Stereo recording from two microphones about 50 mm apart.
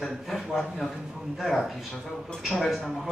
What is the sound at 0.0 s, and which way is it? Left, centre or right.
A man's voice, centre.